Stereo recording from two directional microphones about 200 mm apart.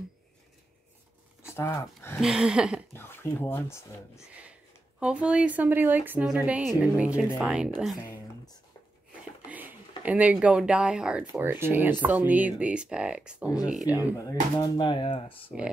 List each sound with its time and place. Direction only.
1.5 s speech: 15° left (ahead or behind)
2.1 s speech: 5° right (ahead or behind)
2.9 s speech: 10° left (ahead or behind)
4.3 s speech: 5° right (ahead or behind)
9.5 s speech: 10° right (ahead or behind)
14.6 s speech: 25° left (ahead or behind)